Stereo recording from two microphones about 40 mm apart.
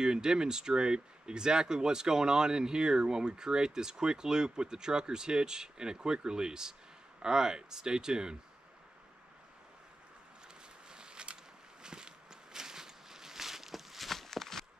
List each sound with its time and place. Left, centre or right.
0.0 s speech: centre
10.9 s a sound: right
11.8 s walk: centre